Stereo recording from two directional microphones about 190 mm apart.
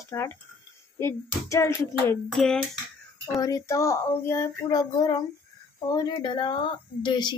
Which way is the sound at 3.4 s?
15° left (ahead or behind).